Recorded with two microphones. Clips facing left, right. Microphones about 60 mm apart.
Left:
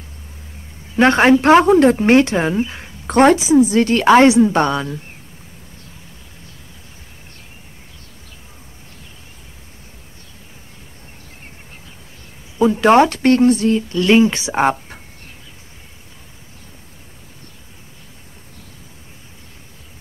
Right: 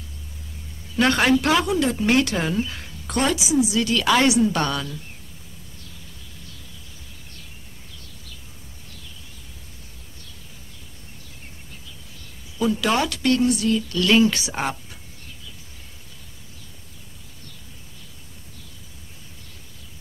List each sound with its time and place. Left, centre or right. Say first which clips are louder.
0.9 s a woman's voice: left 7 dB; left
3.2 s a woman's voice: left 10 dB; left
12.5 s a woman's voice: left 10 dB; left